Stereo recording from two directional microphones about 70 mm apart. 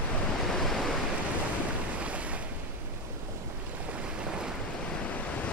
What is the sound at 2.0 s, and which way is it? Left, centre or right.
Waves, centre.